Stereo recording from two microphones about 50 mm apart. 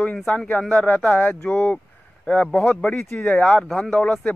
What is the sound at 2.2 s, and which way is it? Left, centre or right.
Speech, centre.